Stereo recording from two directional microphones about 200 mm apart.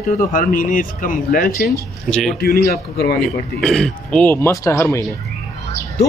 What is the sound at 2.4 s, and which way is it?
Speech, 50° left (ahead or behind).